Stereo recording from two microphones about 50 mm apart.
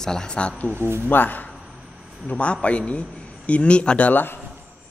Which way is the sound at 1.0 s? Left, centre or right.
Left.